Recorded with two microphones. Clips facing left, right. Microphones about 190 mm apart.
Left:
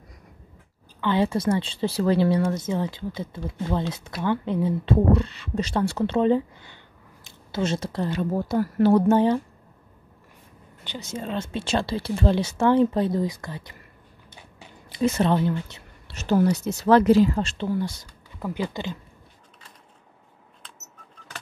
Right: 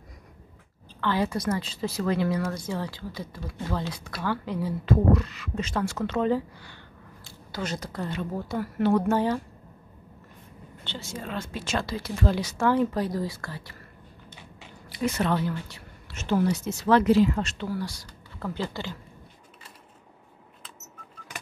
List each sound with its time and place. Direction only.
1.0 s speech: 25° left (ahead or behind)
9.0 s speech: 25° left (ahead or behind)
10.8 s speech: 15° left (ahead or behind)
14.9 s speech: 25° left (ahead or behind)
16.2 s speech: 40° left (ahead or behind); by 18.9 s 20° left (ahead or behind)